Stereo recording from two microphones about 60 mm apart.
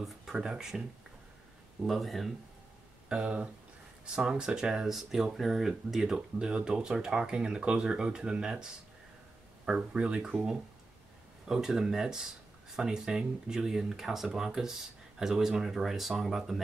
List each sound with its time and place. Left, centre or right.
0.0 s speech: centre
1.9 s speech: centre
3.1 s speech: centre
9.7 s speech: centre
11.4 s speech: centre